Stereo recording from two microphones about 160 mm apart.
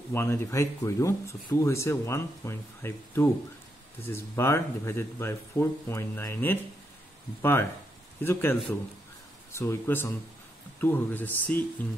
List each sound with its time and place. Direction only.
0.1 s speech: 15° left (ahead or behind)
8.2 s speech: 15° left (ahead or behind)